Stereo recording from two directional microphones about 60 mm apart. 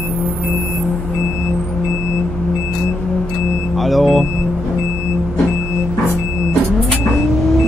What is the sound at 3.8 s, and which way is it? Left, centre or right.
Vehicle, centre.